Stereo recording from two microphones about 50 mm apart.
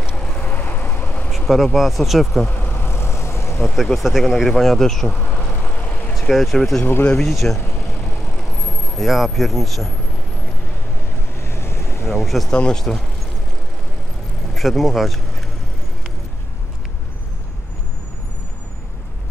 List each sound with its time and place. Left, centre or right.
0.1 s vehicle: centre
0.5 s vehicle: left
1.5 s speech: centre
2.4 s vehicle: left
3.6 s speech: centre
5.3 s vehicle: left
6.3 s speech: centre
8.6 s speech: centre
11.4 s boat: left
12.1 s speech: centre
12.4 s speech: centre
14.5 s speech: centre